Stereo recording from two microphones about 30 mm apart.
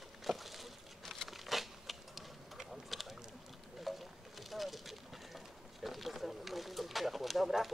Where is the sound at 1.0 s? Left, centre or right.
Centre.